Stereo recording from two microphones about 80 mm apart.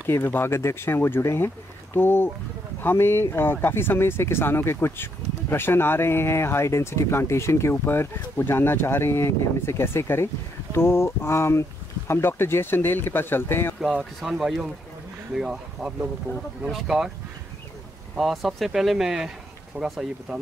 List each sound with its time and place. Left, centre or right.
0.0 s speech: left
14.2 s speech: centre
18.1 s speech: centre